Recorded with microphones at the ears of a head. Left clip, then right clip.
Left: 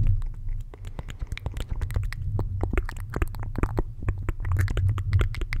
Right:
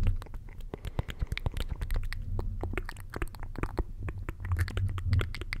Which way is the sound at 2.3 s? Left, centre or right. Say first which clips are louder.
Left 7 dB; left.